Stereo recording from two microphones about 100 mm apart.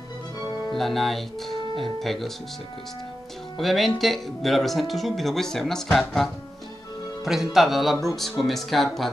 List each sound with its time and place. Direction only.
0.7 s speech: centre (ahead or behind)
3.5 s speech: centre (ahead or behind)